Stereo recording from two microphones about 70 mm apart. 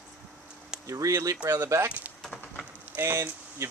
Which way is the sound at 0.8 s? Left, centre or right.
Right.